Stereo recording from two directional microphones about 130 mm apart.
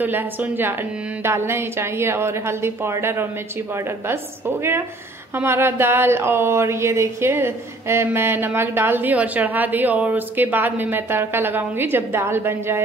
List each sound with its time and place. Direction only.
0.0 s a woman's voice: 15° right (ahead or behind)